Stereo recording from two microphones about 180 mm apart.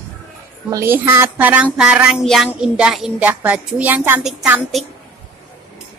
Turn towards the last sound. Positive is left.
turn(degrees=-5)  # may be behind; listen again after turning